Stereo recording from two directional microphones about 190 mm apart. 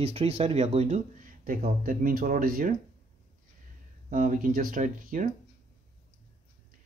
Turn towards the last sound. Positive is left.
turn(degrees=-45)  # may be behind; listen again after turning